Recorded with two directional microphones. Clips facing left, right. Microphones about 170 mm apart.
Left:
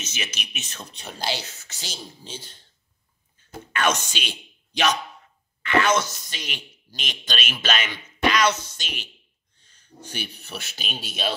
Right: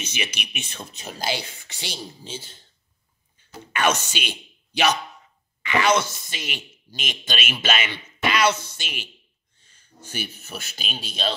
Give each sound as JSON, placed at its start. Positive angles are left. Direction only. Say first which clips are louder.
{"t": 0.0, "sound": "speech", "louder": "right 3 dB", "side_deg": -10}
{"t": 3.7, "sound": "speech", "louder": "right 1 dB", "side_deg": -10}
{"t": 6.0, "sound": "speech", "louder": "right 1 dB", "side_deg": -55}
{"t": 6.3, "sound": "speech", "louder": "right 4 dB", "side_deg": -10}
{"t": 8.0, "sound": "a sound", "louder": "left 2 dB", "side_deg": -10}
{"t": 8.7, "sound": "speech", "louder": "right 1 dB", "side_deg": -10}
{"t": 9.6, "sound": "a sound", "louder": "right 1 dB", "side_deg": -10}
{"t": 10.0, "sound": "a man's voice", "louder": "right 2 dB", "side_deg": -5}